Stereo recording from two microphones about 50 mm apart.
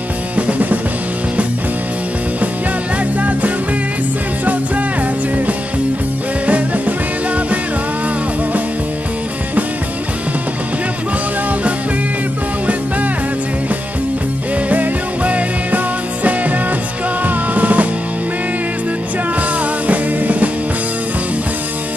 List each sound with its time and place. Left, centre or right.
0.4 s music: right
3.2 s music: right
14.7 s music: right
17.2 s music: right
19.9 s music: right